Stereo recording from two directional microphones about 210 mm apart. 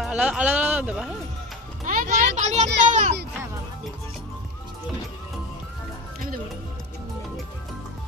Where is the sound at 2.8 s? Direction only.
35° right (ahead or behind).